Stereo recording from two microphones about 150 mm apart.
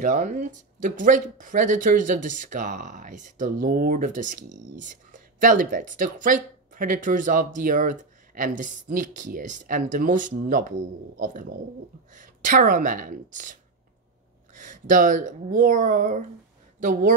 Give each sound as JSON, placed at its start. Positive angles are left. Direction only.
{"t": 0.0, "sound": "speech", "side_deg": -55}